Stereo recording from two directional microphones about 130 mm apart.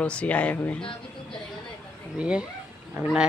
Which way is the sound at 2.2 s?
10° right (ahead or behind).